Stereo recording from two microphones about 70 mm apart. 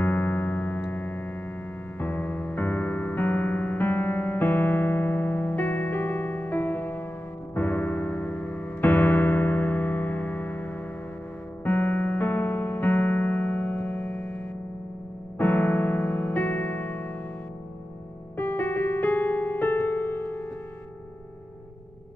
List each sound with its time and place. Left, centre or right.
0.0 s music: left
15.3 s piano: left
18.4 s piano: left